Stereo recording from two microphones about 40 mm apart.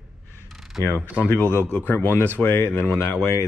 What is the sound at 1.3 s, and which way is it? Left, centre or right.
Speech, left.